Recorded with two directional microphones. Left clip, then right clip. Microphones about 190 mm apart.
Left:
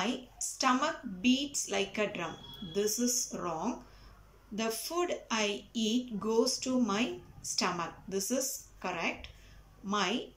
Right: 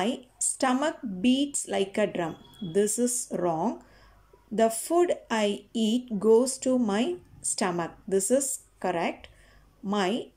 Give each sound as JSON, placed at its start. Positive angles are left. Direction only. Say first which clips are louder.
{"t": 0.6, "sound": "speech", "louder": "right 3 dB", "side_deg": -35}